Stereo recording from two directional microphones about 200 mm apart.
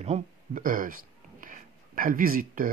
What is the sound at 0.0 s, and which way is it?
Speech, 40° right (ahead or behind).